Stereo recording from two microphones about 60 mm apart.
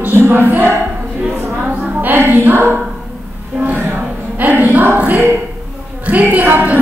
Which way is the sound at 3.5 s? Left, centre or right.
Right.